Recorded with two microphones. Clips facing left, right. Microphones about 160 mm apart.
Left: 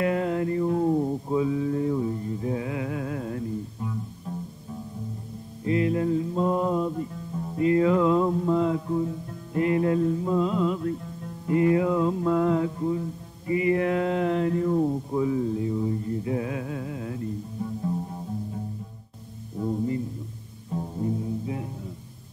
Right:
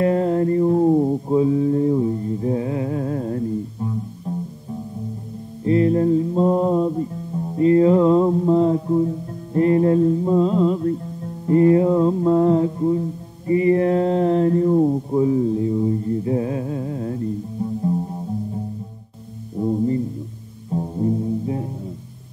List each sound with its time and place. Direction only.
0.0 s music: 35° right (ahead or behind)
5.7 s music: 35° right (ahead or behind)
11.4 s mantra: 35° right (ahead or behind)
19.6 s music: 25° right (ahead or behind)